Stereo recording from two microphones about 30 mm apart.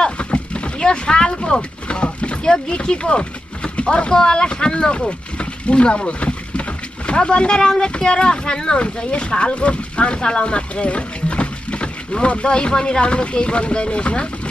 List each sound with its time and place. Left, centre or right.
0.0 s rowboat: left
2.4 s speech: left
4.1 s speech: left
5.4 s boat: left
7.2 s speech: left